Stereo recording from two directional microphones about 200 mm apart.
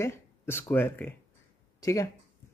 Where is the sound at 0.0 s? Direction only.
10° left (ahead or behind).